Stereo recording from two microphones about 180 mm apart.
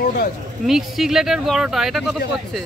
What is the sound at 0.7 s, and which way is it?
Speech, centre (ahead or behind).